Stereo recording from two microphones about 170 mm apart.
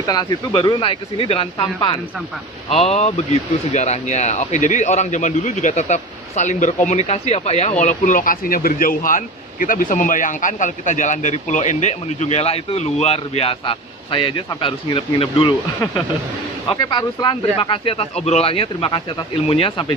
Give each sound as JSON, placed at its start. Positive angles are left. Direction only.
{"t": 0.0, "sound": "speech", "side_deg": 25}
{"t": 7.8, "sound": "speech", "side_deg": 50}
{"t": 16.6, "sound": "speech", "side_deg": 25}